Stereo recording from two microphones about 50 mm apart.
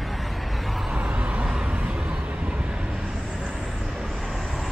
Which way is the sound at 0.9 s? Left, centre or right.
Right.